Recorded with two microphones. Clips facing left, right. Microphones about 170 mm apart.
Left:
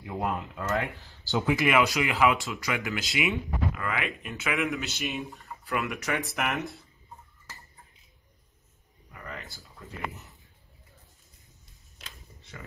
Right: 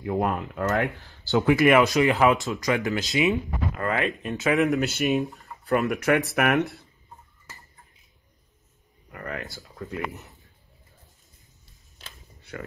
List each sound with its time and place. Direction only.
0.0 s speech: 55° right (ahead or behind)
6.3 s speech: 60° right (ahead or behind)
9.1 s a sound: 60° right (ahead or behind)
9.8 s speech: 70° right (ahead or behind)